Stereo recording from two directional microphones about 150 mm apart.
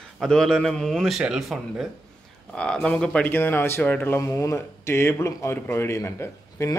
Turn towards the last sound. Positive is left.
turn(degrees=20)  # may be behind; listen again after turning